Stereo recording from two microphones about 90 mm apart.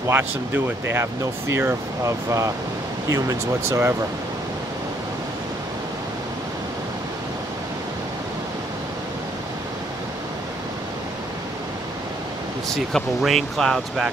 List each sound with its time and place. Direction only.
0.1 s speech: 25° right (ahead or behind)
12.6 s speech: 5° left (ahead or behind)